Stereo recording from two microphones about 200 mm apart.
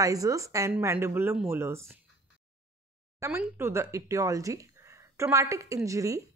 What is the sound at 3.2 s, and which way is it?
A woman's voice, 10° right (ahead or behind).